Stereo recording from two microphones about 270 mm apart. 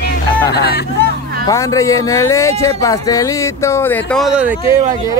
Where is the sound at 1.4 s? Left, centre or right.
Centre.